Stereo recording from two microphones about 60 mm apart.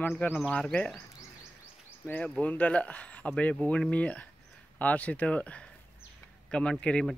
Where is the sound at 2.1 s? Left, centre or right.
Left.